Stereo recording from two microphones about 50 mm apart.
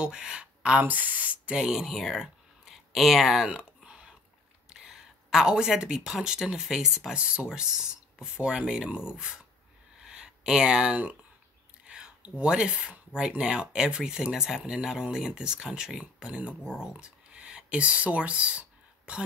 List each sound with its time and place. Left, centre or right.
0.0 s speech: centre
0.8 s speech: right; by 3.4 s centre
3.4 s a sound: centre
4.6 s speech: centre
7.2 s speech: right
16.8 s a sound: centre